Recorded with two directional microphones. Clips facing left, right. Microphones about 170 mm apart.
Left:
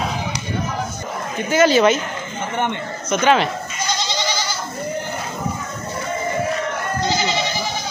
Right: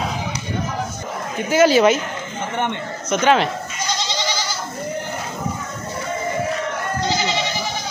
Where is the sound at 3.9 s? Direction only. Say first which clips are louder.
Left 1 dB; 55° left (ahead or behind).